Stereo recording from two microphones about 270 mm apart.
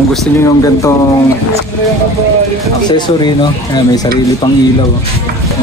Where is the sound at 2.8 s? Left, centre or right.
Centre.